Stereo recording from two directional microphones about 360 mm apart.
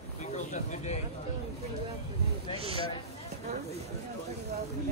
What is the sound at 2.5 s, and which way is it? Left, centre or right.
Speech, centre.